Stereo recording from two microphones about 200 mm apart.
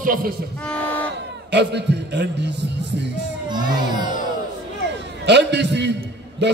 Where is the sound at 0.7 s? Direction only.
10° left (ahead or behind).